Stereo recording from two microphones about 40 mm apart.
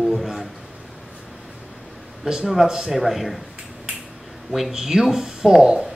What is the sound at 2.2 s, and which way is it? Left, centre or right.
Speech, centre.